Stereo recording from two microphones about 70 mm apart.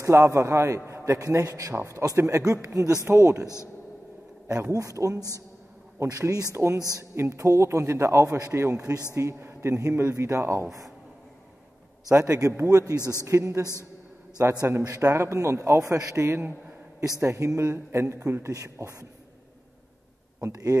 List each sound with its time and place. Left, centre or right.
0.0 s a man's voice: right
1.2 s a man's voice: right
4.6 s a man's voice: right
6.5 s a man's voice: right
9.1 s speech: right
12.1 s a man's voice: right